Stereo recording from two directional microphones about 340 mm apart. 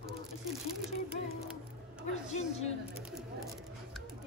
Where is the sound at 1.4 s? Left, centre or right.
Centre.